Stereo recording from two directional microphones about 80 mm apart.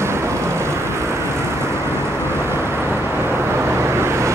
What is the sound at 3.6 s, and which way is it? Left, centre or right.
Vehicle, right.